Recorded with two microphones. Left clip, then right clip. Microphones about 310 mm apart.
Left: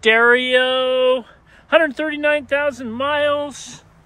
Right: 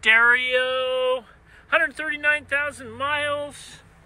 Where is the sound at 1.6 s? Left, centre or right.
Centre.